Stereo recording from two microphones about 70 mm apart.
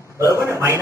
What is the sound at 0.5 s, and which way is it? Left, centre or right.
Speech, right.